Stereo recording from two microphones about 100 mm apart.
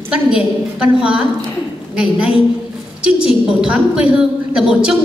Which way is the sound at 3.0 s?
10° right (ahead or behind).